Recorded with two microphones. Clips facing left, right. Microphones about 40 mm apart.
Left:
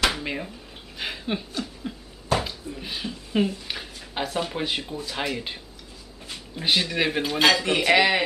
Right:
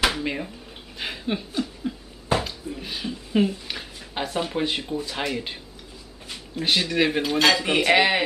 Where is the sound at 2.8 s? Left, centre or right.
Centre.